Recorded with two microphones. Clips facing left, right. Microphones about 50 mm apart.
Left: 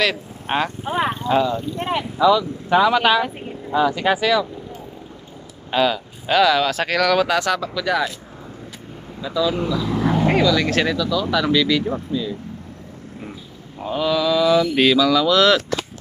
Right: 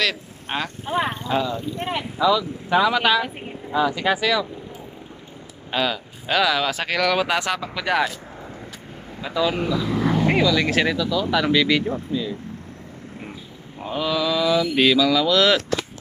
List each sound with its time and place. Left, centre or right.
0.0 s speech: centre
1.0 s speech: centre
5.7 s speech: centre
7.7 s speech: right
9.2 s speech: right
9.8 s vehicle: centre
10.3 s speech: centre
11.0 s speech: right
13.8 s speech: centre